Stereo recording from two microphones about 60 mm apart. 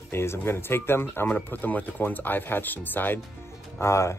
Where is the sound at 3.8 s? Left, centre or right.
Left.